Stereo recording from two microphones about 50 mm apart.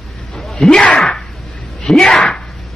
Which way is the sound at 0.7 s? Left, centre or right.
Left.